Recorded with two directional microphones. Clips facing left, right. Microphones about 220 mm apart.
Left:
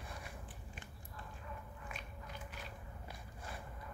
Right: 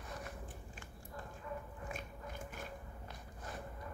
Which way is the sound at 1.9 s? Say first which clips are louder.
Right 4 dB; 50° right (ahead or behind).